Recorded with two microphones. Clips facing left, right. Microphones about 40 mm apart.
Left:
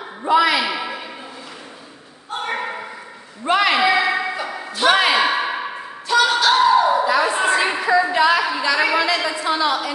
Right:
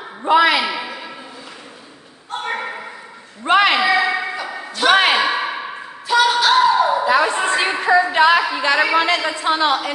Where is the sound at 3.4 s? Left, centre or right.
Right.